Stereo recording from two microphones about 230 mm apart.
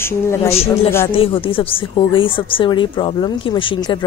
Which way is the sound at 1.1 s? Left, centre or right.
Left.